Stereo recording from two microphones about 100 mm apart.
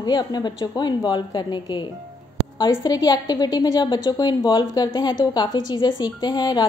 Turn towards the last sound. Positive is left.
turn(degrees=40)  # may be behind; listen again after turning